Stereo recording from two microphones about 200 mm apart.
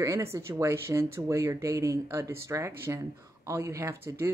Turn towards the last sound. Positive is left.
turn(degrees=-15)  # may be behind; listen again after turning